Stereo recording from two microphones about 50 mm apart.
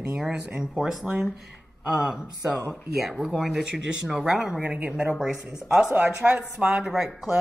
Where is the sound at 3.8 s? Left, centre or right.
Centre.